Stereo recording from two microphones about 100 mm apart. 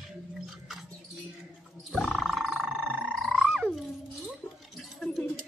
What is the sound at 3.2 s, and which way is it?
Frog, centre (ahead or behind).